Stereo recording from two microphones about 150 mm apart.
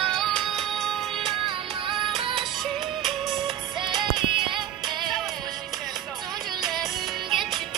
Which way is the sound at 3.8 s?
30° right (ahead or behind).